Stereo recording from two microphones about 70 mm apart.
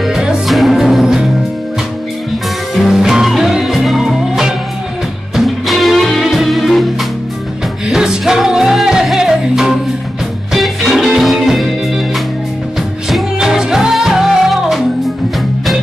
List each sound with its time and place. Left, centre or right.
0.0 s music: centre
2.7 s music: centre
7.9 s music: centre
13.1 s music: centre